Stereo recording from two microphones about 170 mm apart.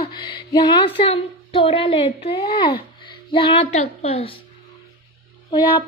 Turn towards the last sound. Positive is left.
turn(degrees=25)  # may be behind; listen again after turning